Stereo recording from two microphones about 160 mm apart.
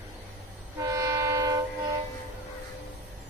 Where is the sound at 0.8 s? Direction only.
25° right (ahead or behind).